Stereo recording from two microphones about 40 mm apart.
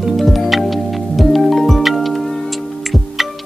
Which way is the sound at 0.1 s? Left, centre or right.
Centre.